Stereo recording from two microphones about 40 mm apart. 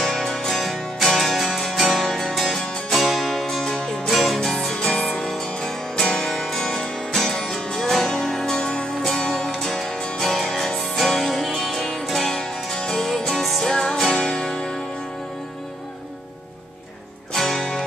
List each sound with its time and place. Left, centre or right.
0.1 s music: centre
3.6 s music: centre
4.1 s music: centre
4.4 s music: centre
4.7 s music: left
5.0 s music: centre
8.5 s music: left
10.2 s music: centre
17.3 s music: centre